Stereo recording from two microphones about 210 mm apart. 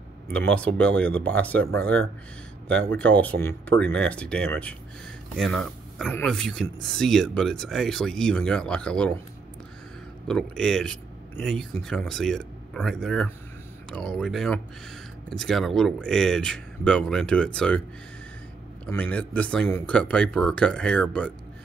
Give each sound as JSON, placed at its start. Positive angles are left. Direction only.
{"t": 0.5, "sound": "speech", "side_deg": 5}
{"t": 3.0, "sound": "speech", "side_deg": 5}
{"t": 10.2, "sound": "speech", "side_deg": 5}
{"t": 18.9, "sound": "speech", "side_deg": 5}